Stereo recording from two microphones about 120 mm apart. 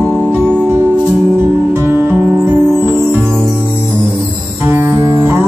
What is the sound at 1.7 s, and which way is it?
Music, 20° right (ahead or behind).